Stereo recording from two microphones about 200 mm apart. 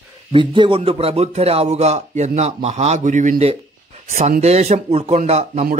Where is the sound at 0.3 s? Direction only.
25° right (ahead or behind).